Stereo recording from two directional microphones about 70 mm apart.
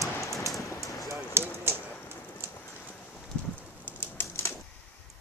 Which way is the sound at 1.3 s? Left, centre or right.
Right.